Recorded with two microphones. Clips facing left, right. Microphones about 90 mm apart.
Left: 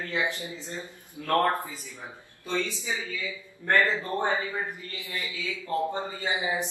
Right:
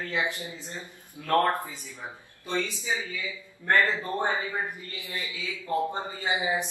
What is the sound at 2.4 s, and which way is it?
Speech, 15° right (ahead or behind).